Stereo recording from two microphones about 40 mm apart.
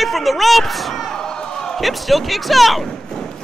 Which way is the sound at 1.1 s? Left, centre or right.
Centre.